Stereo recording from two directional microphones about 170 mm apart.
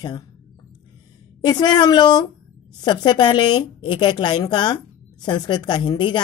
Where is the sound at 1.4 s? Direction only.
25° left (ahead or behind).